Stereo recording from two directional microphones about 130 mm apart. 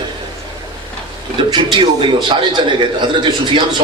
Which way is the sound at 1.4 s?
35° right (ahead or behind).